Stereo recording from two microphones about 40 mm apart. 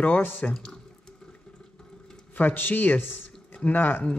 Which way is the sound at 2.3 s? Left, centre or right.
Left.